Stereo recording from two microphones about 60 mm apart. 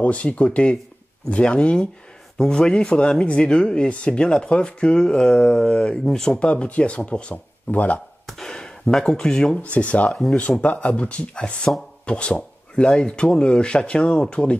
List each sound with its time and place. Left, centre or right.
0.0 s speech: left; by 6.3 s centre
6.3 s speech: centre
8.3 s gasp: centre
9.6 s speech: left